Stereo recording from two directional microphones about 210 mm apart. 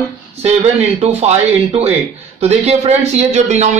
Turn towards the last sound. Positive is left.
turn(degrees=-35)  # may be behind; listen again after turning